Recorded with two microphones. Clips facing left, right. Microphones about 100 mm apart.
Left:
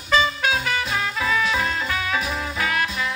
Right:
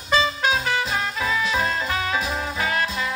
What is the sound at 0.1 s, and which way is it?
Music, 30° right (ahead or behind).